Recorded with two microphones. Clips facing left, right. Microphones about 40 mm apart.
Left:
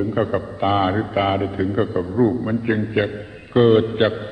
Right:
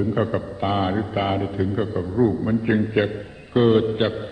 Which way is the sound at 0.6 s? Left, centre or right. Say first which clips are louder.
Left 4 dB; centre.